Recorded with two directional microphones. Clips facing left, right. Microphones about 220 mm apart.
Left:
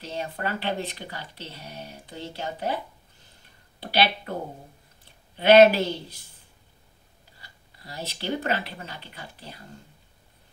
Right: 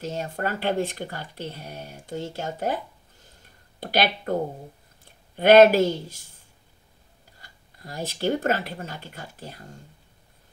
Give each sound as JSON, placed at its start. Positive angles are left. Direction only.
{"t": 0.0, "sound": "speech", "side_deg": -45}
{"t": 3.8, "sound": "speech", "side_deg": -45}
{"t": 7.3, "sound": "speech", "side_deg": -50}